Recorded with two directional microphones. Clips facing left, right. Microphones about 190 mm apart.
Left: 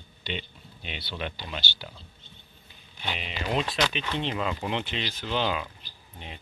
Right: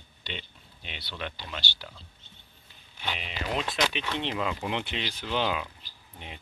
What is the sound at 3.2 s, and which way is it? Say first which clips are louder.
Speech: left 4 dB; centre (ahead or behind).